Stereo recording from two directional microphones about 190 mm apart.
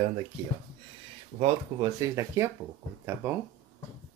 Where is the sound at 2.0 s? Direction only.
15° right (ahead or behind).